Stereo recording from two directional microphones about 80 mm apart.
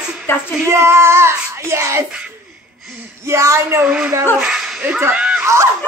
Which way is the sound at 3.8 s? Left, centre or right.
Centre.